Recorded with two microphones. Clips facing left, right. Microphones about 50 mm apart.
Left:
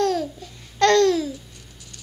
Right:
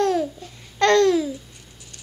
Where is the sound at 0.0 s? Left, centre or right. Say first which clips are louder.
Right 1 dB; centre.